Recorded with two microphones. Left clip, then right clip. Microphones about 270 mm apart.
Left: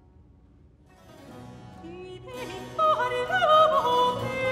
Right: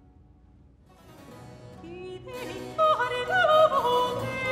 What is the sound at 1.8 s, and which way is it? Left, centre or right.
Yodeling, centre.